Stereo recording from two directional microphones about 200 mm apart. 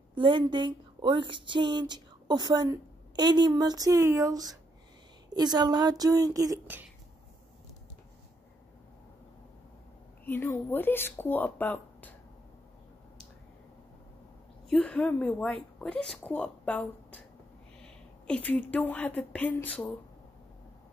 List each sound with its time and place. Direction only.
0.1 s a woman's voice: 25° right (ahead or behind)
10.2 s speech: 10° left (ahead or behind)
14.7 s a woman's voice: 5° left (ahead or behind)